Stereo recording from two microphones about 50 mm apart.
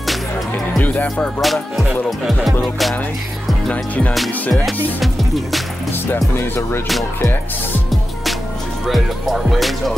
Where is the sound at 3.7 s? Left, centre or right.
Left.